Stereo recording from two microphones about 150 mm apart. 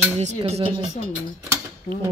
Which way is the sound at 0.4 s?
40° right (ahead or behind).